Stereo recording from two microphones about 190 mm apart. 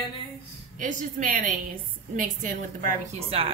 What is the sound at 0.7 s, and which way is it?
A woman's voice, 45° right (ahead or behind).